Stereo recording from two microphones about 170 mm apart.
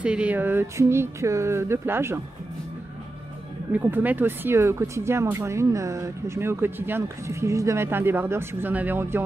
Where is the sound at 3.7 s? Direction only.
10° right (ahead or behind).